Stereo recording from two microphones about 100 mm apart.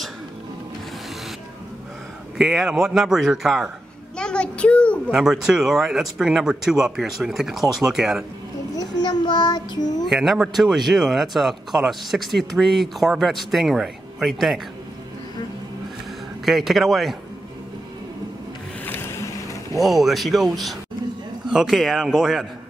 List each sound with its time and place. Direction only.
2.3 s speech: 5° right (ahead or behind)
4.2 s child singing: 10° left (ahead or behind)
5.1 s speech: 5° right (ahead or behind)
8.7 s child singing: 45° left (ahead or behind)
10.0 s speech: 5° right (ahead or behind)
16.4 s speech: centre (ahead or behind)
18.9 s boat: 25° left (ahead or behind)
19.8 s speech: centre (ahead or behind)